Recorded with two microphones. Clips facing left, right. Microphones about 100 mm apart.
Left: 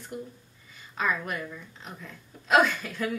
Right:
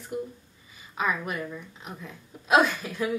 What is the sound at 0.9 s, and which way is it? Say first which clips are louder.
Speech: right 1 dB; 15° right (ahead or behind).